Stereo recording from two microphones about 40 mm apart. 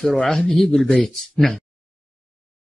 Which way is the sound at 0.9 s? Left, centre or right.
Centre.